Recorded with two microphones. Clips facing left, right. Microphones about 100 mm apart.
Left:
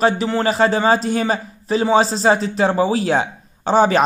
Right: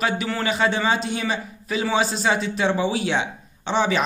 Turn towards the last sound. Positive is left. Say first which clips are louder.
# left 7 dB
turn(degrees=45)  # may be behind; listen again after turning